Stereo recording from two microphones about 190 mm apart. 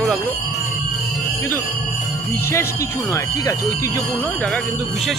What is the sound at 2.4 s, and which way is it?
Speech, 15° left (ahead or behind).